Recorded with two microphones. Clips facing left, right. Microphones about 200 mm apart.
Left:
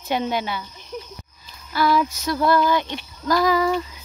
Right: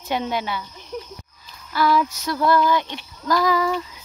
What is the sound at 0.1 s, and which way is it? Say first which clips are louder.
Child singing: left 1 dB; 20° left (ahead or behind).